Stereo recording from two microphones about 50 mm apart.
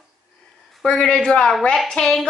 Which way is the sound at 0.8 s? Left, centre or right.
Centre.